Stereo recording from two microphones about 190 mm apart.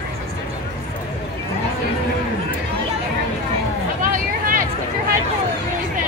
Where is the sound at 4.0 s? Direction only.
45° right (ahead or behind).